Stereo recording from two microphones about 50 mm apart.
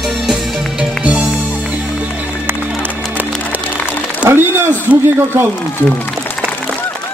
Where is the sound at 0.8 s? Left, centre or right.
Right.